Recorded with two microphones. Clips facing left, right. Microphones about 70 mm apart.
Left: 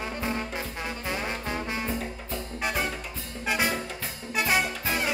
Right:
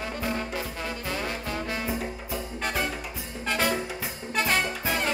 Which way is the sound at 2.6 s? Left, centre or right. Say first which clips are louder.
Even; centre.